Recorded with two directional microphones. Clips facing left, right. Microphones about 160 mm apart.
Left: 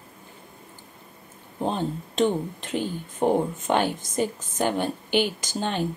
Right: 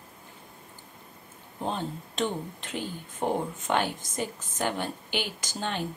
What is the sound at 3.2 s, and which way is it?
Speech, 25° left (ahead or behind).